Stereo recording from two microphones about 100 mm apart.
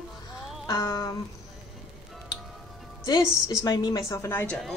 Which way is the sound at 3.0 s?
40° left (ahead or behind).